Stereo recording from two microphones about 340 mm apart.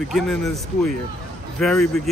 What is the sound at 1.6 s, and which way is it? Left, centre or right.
Speech, centre.